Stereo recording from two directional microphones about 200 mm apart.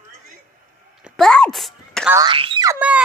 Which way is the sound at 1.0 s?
5° left (ahead or behind).